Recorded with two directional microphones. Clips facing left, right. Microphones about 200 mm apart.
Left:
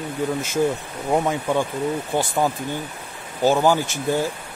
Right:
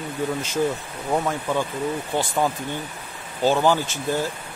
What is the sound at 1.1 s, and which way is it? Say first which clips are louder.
Speech: left 3 dB; 15° left (ahead or behind).